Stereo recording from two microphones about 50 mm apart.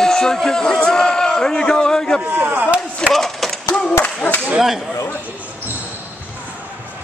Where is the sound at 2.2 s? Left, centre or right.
Right.